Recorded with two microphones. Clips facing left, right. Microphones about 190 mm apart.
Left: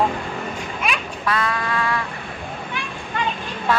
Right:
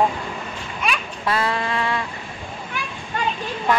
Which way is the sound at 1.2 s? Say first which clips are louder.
Right 1 dB; 25° right (ahead or behind).